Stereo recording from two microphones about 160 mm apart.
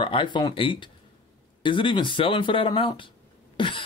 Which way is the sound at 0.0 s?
30° left (ahead or behind).